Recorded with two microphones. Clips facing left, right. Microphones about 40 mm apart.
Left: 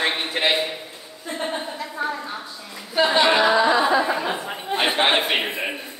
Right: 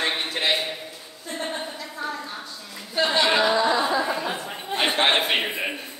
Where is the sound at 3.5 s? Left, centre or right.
Left.